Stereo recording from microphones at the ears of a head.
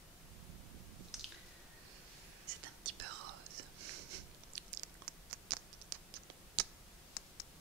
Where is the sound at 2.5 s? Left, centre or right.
Right.